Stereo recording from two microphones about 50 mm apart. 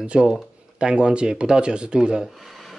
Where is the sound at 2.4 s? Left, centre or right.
Centre.